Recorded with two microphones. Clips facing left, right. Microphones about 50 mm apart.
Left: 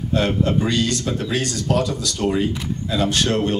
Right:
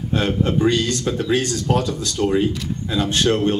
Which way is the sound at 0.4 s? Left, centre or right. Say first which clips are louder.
Right 1 dB; right.